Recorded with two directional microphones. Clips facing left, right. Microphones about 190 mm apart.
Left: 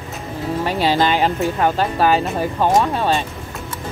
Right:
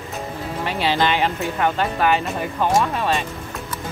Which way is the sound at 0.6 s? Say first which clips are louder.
Left 3 dB; 40° left (ahead or behind).